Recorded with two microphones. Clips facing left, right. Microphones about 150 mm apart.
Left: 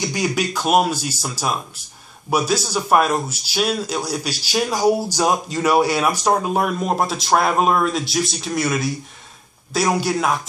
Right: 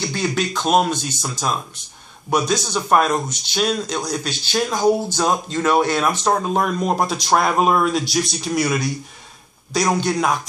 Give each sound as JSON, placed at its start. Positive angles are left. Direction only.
{"t": 0.0, "sound": "speech", "side_deg": 10}